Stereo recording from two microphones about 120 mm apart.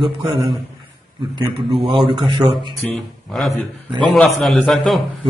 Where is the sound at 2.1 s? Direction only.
45° right (ahead or behind).